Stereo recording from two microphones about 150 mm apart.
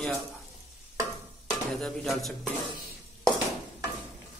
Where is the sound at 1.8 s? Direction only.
Centre (ahead or behind).